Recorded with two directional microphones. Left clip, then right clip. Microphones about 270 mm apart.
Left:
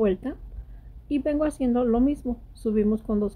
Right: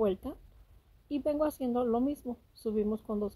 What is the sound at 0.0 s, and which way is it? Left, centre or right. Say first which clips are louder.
A woman's voice: left 6 dB; centre.